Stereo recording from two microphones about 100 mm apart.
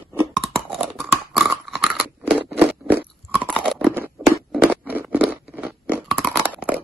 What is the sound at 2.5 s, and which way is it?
Crunch, 15° right (ahead or behind).